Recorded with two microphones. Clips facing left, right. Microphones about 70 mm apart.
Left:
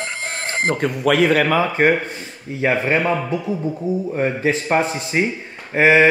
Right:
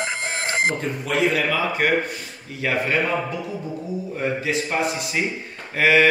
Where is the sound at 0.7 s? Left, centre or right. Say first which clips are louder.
Left 7 dB; left.